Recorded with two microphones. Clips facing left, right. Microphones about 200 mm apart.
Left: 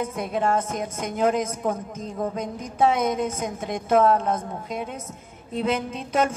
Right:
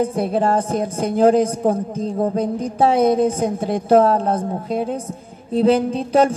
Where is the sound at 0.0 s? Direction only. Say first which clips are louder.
Right 7 dB; 35° right (ahead or behind).